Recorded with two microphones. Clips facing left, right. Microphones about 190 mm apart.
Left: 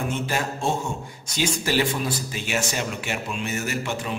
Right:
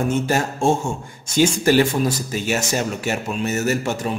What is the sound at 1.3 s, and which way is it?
A man's voice, 50° right (ahead or behind).